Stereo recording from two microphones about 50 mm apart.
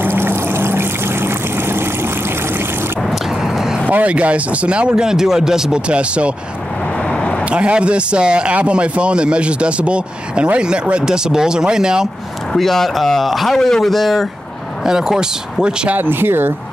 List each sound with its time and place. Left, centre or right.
0.0 s a sound: right
3.0 s vehicle: centre
3.8 s a man's voice: right; by 5.8 s centre
5.9 s a man's voice: right
7.1 s a sound: centre
7.4 s a man's voice: right
12.5 s speech: centre
14.9 s speech: centre
15.9 s speech: right